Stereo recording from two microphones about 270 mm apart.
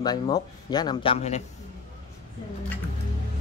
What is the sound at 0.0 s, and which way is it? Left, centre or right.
Speech, centre.